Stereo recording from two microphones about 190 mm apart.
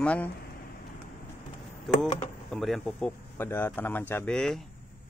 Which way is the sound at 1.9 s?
Centre (ahead or behind).